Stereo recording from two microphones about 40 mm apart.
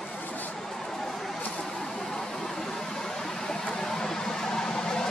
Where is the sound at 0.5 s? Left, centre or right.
Centre.